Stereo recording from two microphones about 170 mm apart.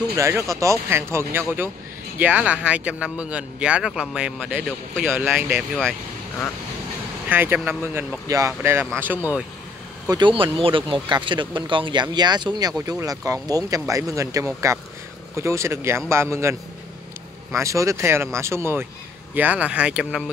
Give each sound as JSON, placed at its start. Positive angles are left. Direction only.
{"t": 0.1, "sound": "speech", "side_deg": -15}
{"t": 7.2, "sound": "speech", "side_deg": -10}
{"t": 10.0, "sound": "speech", "side_deg": -25}
{"t": 17.6, "sound": "speech", "side_deg": -20}